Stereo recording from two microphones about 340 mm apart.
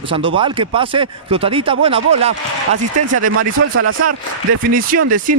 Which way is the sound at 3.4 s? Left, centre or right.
Right.